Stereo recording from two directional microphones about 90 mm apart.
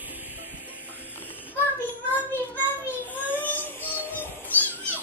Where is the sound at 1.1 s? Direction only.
20° left (ahead or behind).